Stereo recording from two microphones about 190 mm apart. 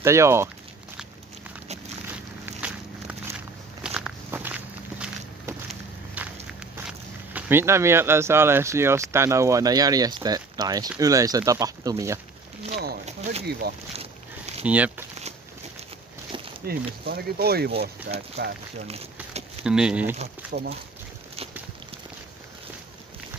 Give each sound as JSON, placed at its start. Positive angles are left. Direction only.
{"t": 0.0, "sound": "speech", "side_deg": -15}
{"t": 2.1, "sound": "walk", "side_deg": -5}
{"t": 6.9, "sound": "speech", "side_deg": -10}
{"t": 13.0, "sound": "a sound", "side_deg": -35}
{"t": 13.6, "sound": "speech", "side_deg": -55}
{"t": 14.6, "sound": "speech", "side_deg": -10}
{"t": 16.6, "sound": "speech", "side_deg": -55}
{"t": 19.6, "sound": "speech", "side_deg": -5}
{"t": 20.5, "sound": "speech", "side_deg": -55}